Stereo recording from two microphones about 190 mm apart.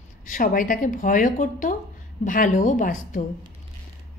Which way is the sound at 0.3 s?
45° left (ahead or behind).